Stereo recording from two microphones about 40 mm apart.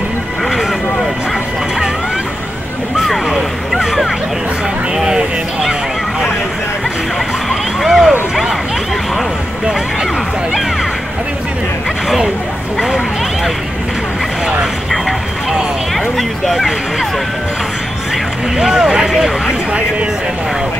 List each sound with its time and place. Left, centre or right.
3.3 s vehicle: centre
4.9 s a sound: centre
7.4 s vehicle: centre
16.2 s speech: centre
18.6 s speech: centre